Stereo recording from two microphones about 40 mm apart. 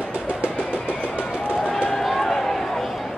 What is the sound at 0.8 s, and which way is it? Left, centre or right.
Music, left.